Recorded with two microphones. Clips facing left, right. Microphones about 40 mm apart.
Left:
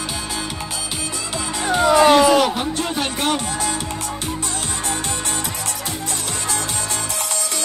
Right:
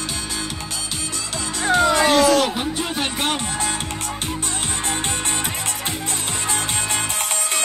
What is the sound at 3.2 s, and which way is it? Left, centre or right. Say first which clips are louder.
Music: left 2 dB; right.